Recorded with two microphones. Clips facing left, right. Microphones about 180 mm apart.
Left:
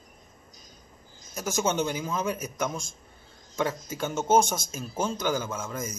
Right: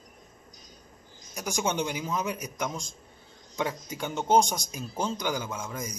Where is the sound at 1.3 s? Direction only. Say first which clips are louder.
Left 2 dB; 15° right (ahead or behind).